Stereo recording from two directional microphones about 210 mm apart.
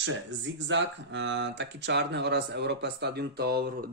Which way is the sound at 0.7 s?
60° right (ahead or behind).